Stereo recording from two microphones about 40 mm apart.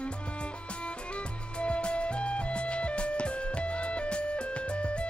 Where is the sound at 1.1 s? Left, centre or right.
Left.